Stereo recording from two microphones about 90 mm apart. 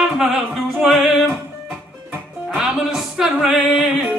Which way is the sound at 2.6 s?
5° right (ahead or behind).